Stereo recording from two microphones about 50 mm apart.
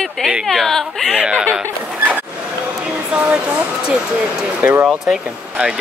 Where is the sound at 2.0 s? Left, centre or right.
Right.